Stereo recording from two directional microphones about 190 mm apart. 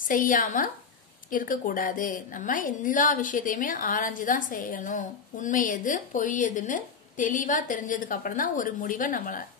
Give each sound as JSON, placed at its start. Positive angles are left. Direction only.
{"t": 0.0, "sound": "a woman's voice", "side_deg": 45}